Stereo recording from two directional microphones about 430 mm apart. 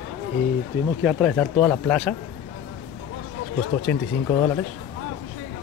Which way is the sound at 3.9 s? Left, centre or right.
Centre.